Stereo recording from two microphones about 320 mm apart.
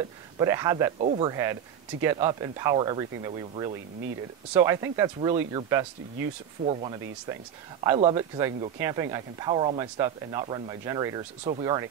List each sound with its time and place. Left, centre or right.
0.4 s speech: centre
0.9 s speech: right